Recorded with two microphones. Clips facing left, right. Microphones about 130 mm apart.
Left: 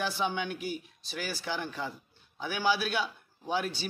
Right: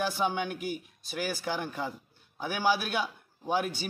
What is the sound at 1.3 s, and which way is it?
Speech, 10° right (ahead or behind).